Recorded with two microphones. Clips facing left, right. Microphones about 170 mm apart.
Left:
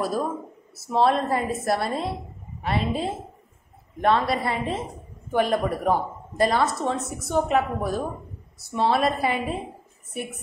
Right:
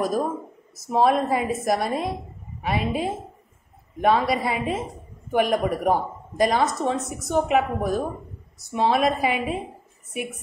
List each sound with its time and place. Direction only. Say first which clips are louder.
0.0 s a woman's voice: right 2 dB; 15° right (ahead or behind)
5.3 s speech: right 1 dB; 15° right (ahead or behind)